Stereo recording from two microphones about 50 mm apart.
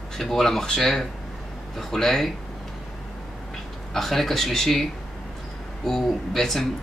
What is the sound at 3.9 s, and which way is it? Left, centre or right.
Speech, centre.